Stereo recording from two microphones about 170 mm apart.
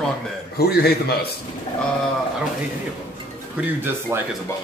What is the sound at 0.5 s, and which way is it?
Speech, 70° left (ahead or behind).